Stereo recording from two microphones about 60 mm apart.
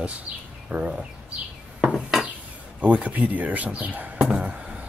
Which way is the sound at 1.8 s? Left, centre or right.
Centre.